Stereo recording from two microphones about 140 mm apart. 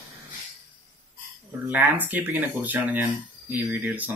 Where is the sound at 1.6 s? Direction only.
15° right (ahead or behind).